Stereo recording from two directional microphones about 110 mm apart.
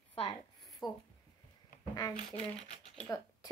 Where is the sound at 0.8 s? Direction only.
35° left (ahead or behind).